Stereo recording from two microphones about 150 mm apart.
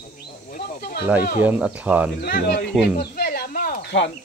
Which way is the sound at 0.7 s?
90° left.